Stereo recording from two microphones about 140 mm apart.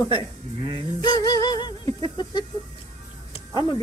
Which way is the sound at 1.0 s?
30° left (ahead or behind).